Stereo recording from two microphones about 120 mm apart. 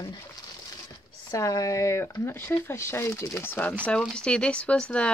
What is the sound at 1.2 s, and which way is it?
A woman's voice, 30° left (ahead or behind).